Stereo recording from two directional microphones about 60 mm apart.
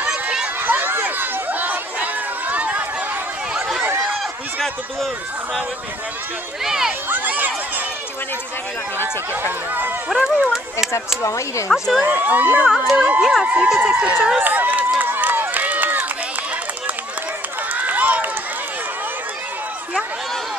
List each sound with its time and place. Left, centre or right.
0.0 s run: centre
0.6 s crowd: right
6.6 s speech: centre
7.1 s speech: right
10.0 s speech: centre
11.2 s speech: left
11.7 s speech: centre
12.0 s speech: right
12.6 s speech: centre
12.9 s speech: right
13.2 s speech: centre
13.7 s speech: right
15.0 s run: right
17.7 s run: right